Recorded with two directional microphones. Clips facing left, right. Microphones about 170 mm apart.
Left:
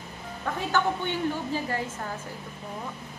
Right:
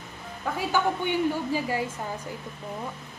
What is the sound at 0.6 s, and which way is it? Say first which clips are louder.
A woman's voice: right 1 dB; 10° right (ahead or behind).